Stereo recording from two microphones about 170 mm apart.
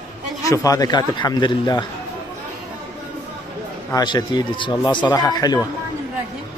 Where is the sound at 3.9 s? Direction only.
25° left (ahead or behind).